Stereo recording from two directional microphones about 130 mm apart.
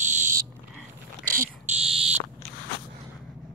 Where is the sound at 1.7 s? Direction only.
50° right (ahead or behind).